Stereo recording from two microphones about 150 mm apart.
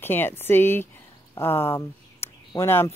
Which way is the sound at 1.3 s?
15° left (ahead or behind).